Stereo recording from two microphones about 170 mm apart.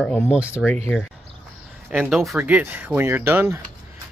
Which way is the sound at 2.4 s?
10° right (ahead or behind).